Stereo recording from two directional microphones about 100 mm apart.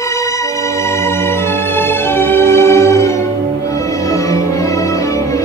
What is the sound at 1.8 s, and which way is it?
Music, 20° left (ahead or behind).